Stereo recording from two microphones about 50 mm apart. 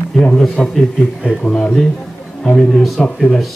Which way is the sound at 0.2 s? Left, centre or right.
Centre.